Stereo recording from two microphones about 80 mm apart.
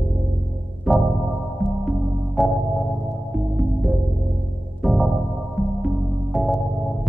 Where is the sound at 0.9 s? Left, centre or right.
Centre.